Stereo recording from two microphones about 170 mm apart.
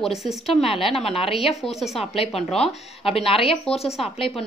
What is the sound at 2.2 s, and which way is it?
Speech, 35° left (ahead or behind).